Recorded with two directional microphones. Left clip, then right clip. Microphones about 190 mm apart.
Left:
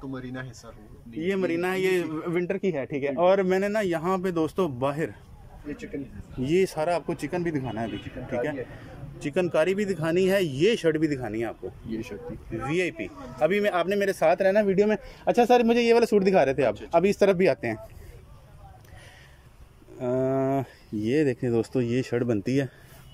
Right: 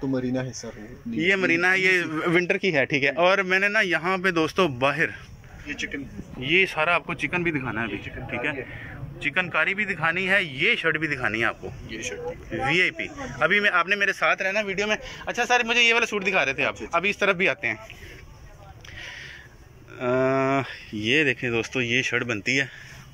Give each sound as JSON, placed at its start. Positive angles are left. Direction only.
{"t": 0.3, "sound": "speech", "side_deg": -25}
{"t": 1.1, "sound": "a man's voice", "side_deg": 10}
{"t": 2.0, "sound": "a man's voice", "side_deg": 0}
{"t": 6.4, "sound": "a man's voice", "side_deg": 30}
{"t": 11.9, "sound": "speech", "side_deg": 65}
{"t": 12.6, "sound": "a man's voice", "side_deg": 15}
{"t": 20.0, "sound": "a man's voice", "side_deg": 20}